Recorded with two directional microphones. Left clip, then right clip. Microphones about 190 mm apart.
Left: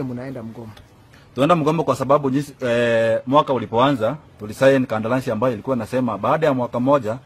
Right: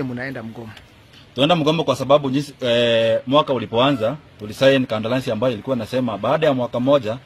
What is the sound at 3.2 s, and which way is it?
A man's voice, 15° left (ahead or behind).